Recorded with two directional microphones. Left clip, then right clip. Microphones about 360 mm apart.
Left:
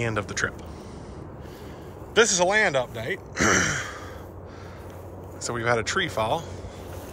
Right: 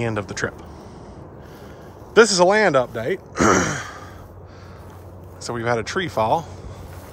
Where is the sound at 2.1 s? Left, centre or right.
Centre.